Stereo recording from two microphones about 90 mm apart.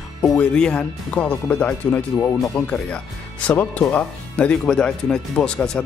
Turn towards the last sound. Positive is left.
turn(degrees=10)  # may be behind; listen again after turning